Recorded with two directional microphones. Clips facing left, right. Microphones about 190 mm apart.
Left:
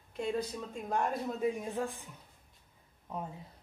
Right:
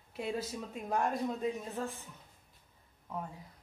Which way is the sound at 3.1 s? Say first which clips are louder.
Left 1 dB; 20° left (ahead or behind).